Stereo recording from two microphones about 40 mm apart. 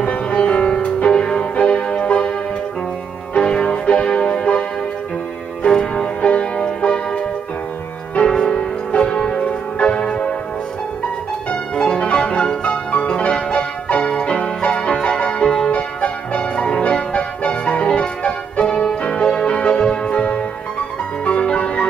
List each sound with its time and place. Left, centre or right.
0.0 s music: left
3.3 s music: left
5.7 s music: left
8.3 s music: centre
12.0 s music: left